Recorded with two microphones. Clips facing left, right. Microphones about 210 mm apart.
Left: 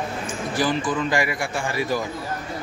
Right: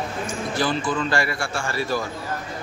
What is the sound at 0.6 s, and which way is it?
A man's voice, 15° left (ahead or behind).